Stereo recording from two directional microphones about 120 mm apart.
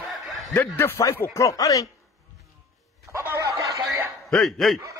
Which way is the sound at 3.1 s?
25° right (ahead or behind).